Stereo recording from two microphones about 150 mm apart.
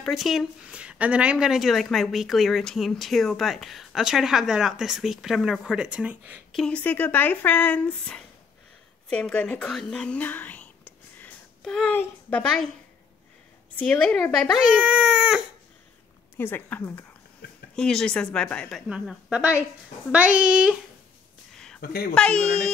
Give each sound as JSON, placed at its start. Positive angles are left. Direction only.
{"t": 0.0, "sound": "a woman's voice", "side_deg": 0}
{"t": 6.5, "sound": "speech", "side_deg": 5}
{"t": 11.1, "sound": "a sound", "side_deg": 5}
{"t": 13.7, "sound": "speech", "side_deg": 5}
{"t": 14.7, "sound": "speech", "side_deg": -5}
{"t": 16.3, "sound": "a woman's voice", "side_deg": 15}
{"t": 22.2, "sound": "speech", "side_deg": 5}